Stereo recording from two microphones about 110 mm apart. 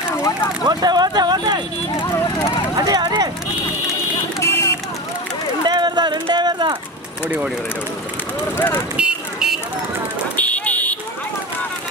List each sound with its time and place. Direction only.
0.1 s a sound: 25° left (ahead or behind)
0.7 s speech: 40° right (ahead or behind)
2.1 s vehicle: 30° left (ahead or behind)
2.8 s a sound: 40° right (ahead or behind)
4.4 s vehicle: 25° left (ahead or behind)
5.7 s a sound: 40° right (ahead or behind)
7.2 s speech: 10° right (ahead or behind)
8.9 s car alarm: 5° right (ahead or behind)
10.3 s vehicle: 15° left (ahead or behind)